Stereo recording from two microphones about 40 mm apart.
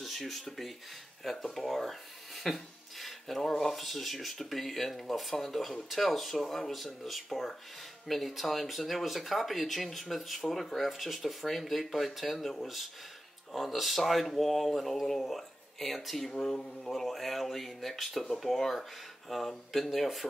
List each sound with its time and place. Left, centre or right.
0.0 s speech: centre
16.3 s speech: centre
16.8 s speech: centre